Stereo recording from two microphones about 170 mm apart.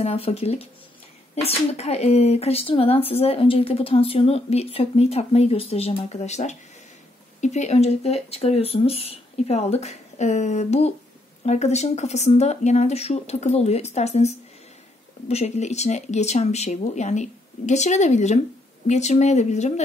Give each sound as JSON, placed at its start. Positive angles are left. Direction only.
{"t": 0.0, "sound": "speech", "side_deg": 35}